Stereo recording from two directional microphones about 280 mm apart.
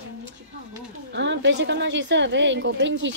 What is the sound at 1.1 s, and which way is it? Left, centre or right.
A woman's voice, right.